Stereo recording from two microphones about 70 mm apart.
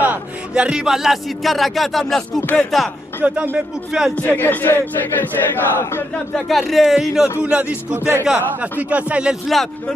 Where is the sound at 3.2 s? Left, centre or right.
Right.